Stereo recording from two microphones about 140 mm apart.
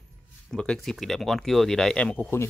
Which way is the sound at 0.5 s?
5° left (ahead or behind).